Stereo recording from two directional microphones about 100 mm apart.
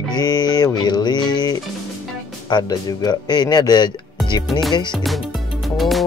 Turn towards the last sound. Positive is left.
turn(degrees=0)  # may be behind; listen again after turning